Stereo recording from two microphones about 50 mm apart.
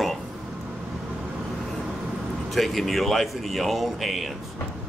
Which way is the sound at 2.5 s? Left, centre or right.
Centre.